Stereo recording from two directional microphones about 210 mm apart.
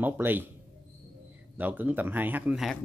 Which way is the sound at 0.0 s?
10° right (ahead or behind).